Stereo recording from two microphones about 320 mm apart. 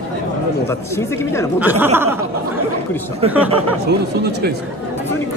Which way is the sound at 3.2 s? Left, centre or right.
Centre.